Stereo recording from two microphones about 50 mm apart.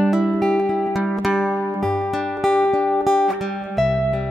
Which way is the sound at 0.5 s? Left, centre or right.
Centre.